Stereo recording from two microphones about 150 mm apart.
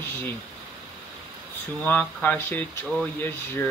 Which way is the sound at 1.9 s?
10° left (ahead or behind).